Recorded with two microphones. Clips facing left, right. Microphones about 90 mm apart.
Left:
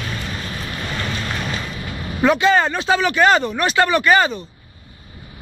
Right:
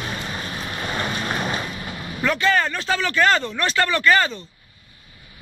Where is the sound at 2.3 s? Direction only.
20° left (ahead or behind).